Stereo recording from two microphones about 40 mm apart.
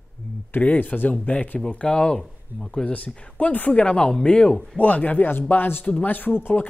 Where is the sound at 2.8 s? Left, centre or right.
Left.